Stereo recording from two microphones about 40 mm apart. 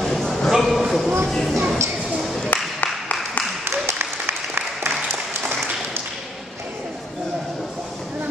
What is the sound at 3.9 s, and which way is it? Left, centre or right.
Applause, right.